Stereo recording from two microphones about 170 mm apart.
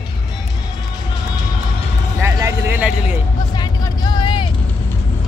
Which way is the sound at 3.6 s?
25° left (ahead or behind).